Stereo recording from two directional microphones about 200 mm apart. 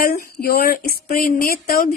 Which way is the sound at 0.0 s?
50° left (ahead or behind).